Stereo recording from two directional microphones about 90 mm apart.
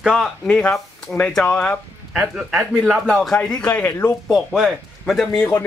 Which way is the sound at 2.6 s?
Centre (ahead or behind).